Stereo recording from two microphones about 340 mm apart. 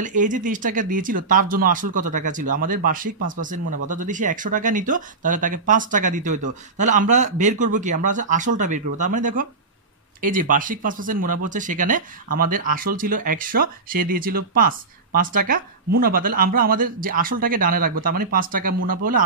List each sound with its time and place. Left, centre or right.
0.0 s speech: right